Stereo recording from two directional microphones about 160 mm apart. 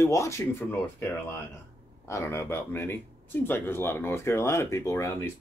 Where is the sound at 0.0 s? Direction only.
20° left (ahead or behind).